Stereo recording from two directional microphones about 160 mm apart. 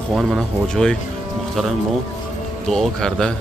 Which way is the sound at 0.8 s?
Centre (ahead or behind).